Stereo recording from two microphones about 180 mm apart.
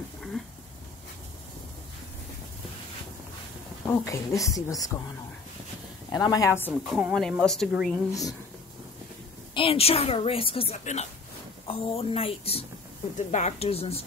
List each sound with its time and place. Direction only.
3.8 s speech: 15° left (ahead or behind)
6.1 s speech: 20° left (ahead or behind)
6.9 s speech: 5° right (ahead or behind)
8.1 s speech: 20° left (ahead or behind)
9.5 s a woman's voice: 30° left (ahead or behind)